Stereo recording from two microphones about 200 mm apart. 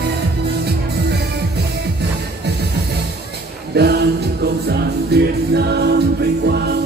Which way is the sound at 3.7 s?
55° right (ahead or behind).